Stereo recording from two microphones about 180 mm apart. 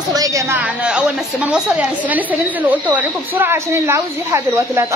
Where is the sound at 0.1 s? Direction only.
20° right (ahead or behind).